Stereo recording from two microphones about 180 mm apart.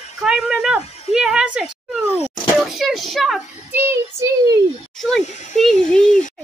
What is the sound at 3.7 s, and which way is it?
Speech, 10° right (ahead or behind).